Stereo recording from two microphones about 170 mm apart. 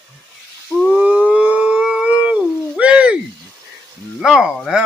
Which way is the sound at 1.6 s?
5° right (ahead or behind).